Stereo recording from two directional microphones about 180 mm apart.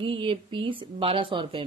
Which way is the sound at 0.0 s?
30° right (ahead or behind).